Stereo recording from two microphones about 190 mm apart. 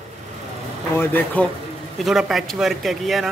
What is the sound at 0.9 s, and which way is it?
A man's voice, 10° left (ahead or behind).